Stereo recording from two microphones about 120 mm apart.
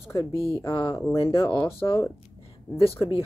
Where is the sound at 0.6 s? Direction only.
35° left (ahead or behind).